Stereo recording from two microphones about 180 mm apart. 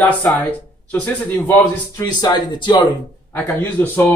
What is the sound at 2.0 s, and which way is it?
Speech, 25° left (ahead or behind).